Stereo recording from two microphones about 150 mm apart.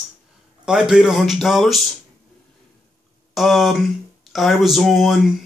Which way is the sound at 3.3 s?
Centre (ahead or behind).